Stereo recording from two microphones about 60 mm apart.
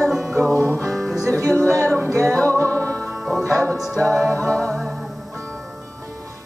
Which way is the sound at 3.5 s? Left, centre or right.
Right.